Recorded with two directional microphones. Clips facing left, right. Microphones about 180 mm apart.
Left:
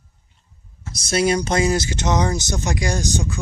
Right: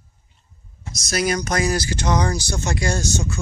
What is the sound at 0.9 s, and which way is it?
Speech, 30° left (ahead or behind).